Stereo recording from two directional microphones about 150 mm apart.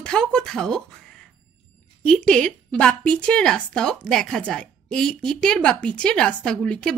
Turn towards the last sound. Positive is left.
turn(degrees=5)  # may be behind; listen again after turning